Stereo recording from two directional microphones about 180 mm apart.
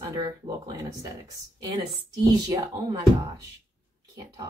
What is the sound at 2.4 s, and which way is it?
Speech, 20° right (ahead or behind).